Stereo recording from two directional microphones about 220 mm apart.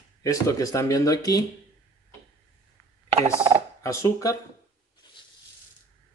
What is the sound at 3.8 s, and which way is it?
Speech, 15° left (ahead or behind).